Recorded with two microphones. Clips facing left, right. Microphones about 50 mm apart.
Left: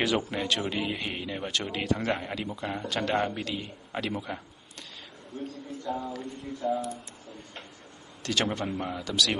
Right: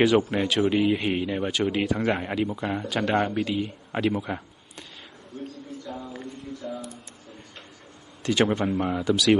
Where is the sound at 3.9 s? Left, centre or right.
Centre.